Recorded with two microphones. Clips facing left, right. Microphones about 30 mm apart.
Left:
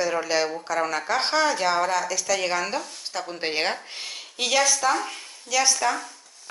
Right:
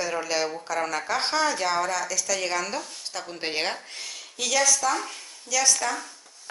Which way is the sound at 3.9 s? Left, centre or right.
Left.